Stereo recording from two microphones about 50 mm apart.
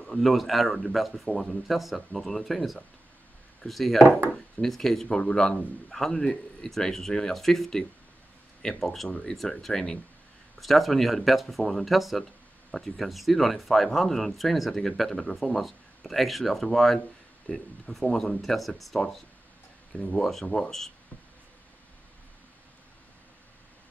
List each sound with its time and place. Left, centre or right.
0.1 s speech: centre
20.0 s speech: centre